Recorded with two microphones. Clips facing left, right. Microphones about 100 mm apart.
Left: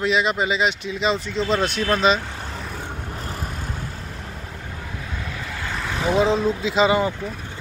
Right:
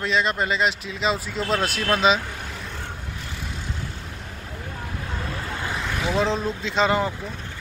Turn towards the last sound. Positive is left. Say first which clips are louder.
# left 3 dB
turn(degrees=0)  # may be behind; listen again after turning